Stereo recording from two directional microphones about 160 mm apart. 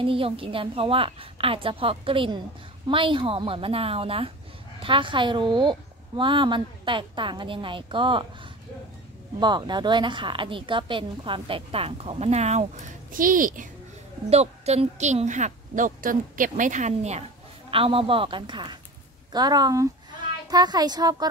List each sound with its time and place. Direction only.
0.0 s a woman's voice: 35° right (ahead or behind)
9.4 s a woman's voice: 30° right (ahead or behind); by 12.6 s 45° right (ahead or behind)
13.1 s a woman's voice: 60° right (ahead or behind)
14.3 s a woman's voice: 40° right (ahead or behind)
17.6 s a woman's voice: 35° right (ahead or behind)